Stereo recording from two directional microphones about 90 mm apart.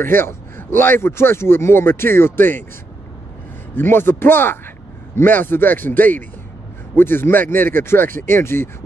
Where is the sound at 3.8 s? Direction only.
25° left (ahead or behind).